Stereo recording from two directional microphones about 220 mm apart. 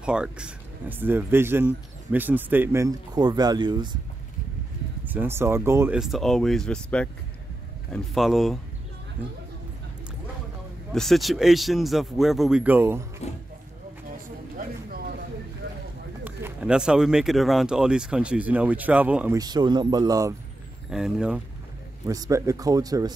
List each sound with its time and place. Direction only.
0.0 s speech: 5° right (ahead or behind); by 4.0 s 20° right (ahead or behind)
5.0 s speech: 10° right (ahead or behind)
10.9 s speech: centre (ahead or behind)
13.2 s speech: 30° left (ahead or behind)
14.6 s a sound: 45° right (ahead or behind)
16.3 s speech: 5° right (ahead or behind)
20.9 s speech: 5° right (ahead or behind)
22.0 s speech: 15° right (ahead or behind)